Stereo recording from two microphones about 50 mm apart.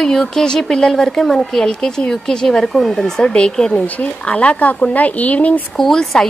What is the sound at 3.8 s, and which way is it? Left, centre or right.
Speech, left.